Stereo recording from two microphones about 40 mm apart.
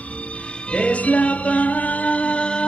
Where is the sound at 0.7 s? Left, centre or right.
Left.